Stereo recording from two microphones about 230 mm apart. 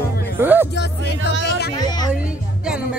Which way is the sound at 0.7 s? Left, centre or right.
Left.